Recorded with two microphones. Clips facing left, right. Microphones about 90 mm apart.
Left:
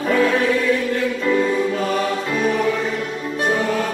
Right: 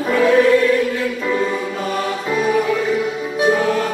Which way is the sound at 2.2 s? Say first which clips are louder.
Right 2 dB; 5° right (ahead or behind).